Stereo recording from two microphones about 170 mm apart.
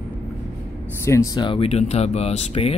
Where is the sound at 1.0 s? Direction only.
20° left (ahead or behind); by 2.8 s 35° left (ahead or behind).